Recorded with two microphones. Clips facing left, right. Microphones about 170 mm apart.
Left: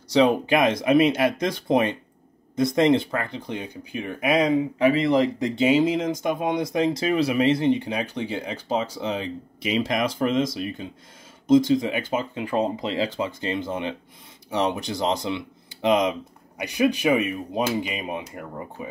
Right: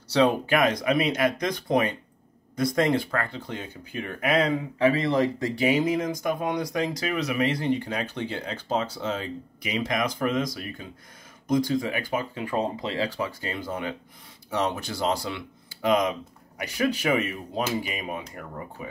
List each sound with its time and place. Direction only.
0.1 s speech: 20° left (ahead or behind)
9.6 s speech: 25° left (ahead or behind)